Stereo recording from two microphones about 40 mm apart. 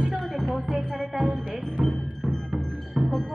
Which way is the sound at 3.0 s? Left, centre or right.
Right.